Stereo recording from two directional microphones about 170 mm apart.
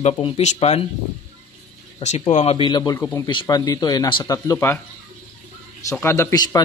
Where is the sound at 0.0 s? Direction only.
40° left (ahead or behind).